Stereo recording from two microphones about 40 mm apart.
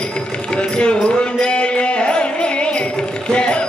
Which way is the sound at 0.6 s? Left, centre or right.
Left.